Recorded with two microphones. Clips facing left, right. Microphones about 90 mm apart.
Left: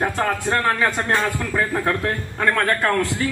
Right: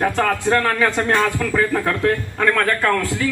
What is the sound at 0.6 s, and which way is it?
Speech, 20° left (ahead or behind).